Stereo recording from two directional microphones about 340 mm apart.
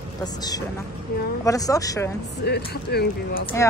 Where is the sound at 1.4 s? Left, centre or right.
Centre.